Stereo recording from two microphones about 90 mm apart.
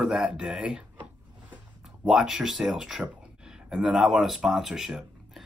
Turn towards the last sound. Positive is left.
turn(degrees=-5)  # may be behind; listen again after turning